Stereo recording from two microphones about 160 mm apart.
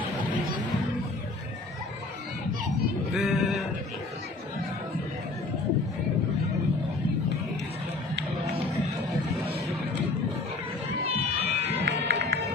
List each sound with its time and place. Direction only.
3.1 s sheep: centre (ahead or behind)
11.1 s music: 40° right (ahead or behind)
11.8 s music: 90° right